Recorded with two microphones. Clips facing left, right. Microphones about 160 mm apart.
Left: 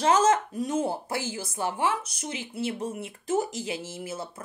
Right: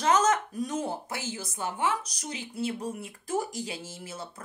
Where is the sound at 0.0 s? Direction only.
30° left (ahead or behind).